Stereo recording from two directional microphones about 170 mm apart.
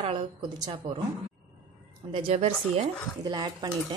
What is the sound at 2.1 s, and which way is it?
A woman's voice, 30° right (ahead or behind).